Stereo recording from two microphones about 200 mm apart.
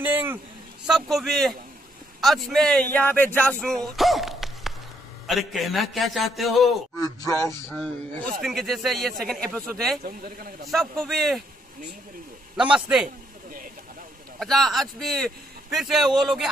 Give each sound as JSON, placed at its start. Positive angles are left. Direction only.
{"t": 0.0, "sound": "a sound", "side_deg": -10}
{"t": 0.8, "sound": "speech", "side_deg": 0}
{"t": 7.0, "sound": "speech", "side_deg": 15}
{"t": 7.7, "sound": "speech", "side_deg": 0}
{"t": 10.0, "sound": "a man's voice", "side_deg": -45}
{"t": 10.7, "sound": "speech", "side_deg": 0}
{"t": 14.4, "sound": "speech", "side_deg": 0}